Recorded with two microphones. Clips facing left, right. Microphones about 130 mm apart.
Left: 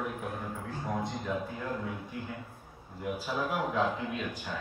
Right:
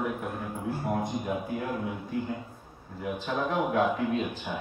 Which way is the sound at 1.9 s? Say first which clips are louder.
Right 7 dB; 20° right (ahead or behind).